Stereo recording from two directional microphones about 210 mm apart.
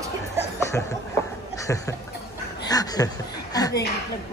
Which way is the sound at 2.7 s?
15° left (ahead or behind).